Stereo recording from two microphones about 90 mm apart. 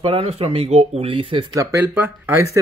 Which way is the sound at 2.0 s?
25° right (ahead or behind).